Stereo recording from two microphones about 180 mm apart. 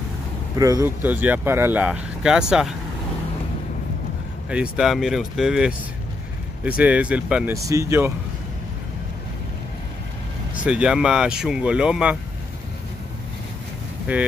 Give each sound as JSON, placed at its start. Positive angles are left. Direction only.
{"t": 0.6, "sound": "speech", "side_deg": -20}
{"t": 4.5, "sound": "speech", "side_deg": -5}
{"t": 6.8, "sound": "speech", "side_deg": -5}
{"t": 7.6, "sound": "speech", "side_deg": -15}
{"t": 10.6, "sound": "speech", "side_deg": -5}
{"t": 14.1, "sound": "speech", "side_deg": -10}